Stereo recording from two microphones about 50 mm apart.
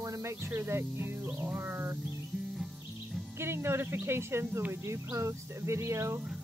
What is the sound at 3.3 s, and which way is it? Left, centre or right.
Speech, right.